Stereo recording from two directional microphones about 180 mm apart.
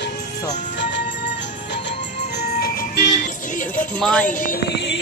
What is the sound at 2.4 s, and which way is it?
Music, 60° left (ahead or behind).